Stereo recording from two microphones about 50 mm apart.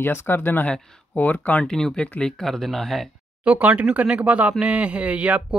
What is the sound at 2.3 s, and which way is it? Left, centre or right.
Speech, centre.